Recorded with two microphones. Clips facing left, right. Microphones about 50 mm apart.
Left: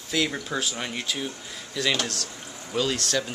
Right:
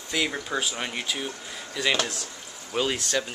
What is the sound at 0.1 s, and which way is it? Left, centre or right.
Speech, centre.